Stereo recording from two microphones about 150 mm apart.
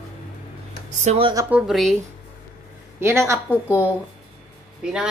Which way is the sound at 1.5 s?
Centre (ahead or behind).